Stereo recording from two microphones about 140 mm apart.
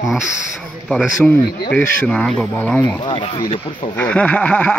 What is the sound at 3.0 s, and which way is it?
Speech, 35° left (ahead or behind).